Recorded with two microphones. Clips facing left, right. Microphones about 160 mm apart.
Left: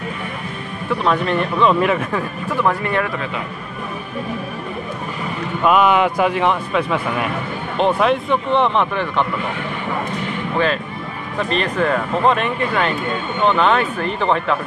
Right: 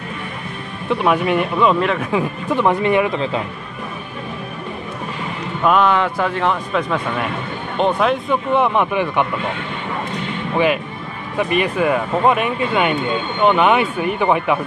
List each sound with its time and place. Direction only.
0.8 s speech: 15° right (ahead or behind)
1.7 s speech: 5° left (ahead or behind)
2.1 s speech: 20° right (ahead or behind)
5.6 s speech: 5° left (ahead or behind); by 9.5 s 15° right (ahead or behind)
10.2 s a sound: 15° right (ahead or behind)
11.3 s speech: 10° right (ahead or behind)